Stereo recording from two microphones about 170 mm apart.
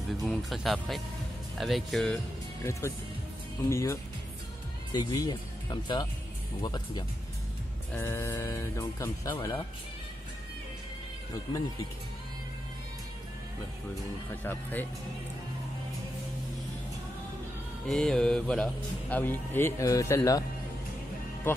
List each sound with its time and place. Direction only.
0.1 s speech: centre (ahead or behind)
2.6 s speech: 15° left (ahead or behind)
7.9 s speech: 15° left (ahead or behind)
14.4 s speech: 10° left (ahead or behind)
17.8 s speech: 5° left (ahead or behind)